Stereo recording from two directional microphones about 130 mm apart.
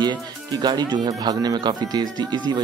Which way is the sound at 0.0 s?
30° right (ahead or behind).